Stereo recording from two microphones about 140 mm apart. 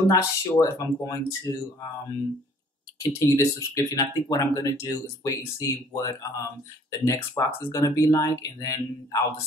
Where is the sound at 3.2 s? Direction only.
20° left (ahead or behind).